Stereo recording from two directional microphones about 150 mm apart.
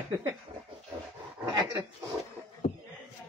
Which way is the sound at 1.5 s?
25° right (ahead or behind).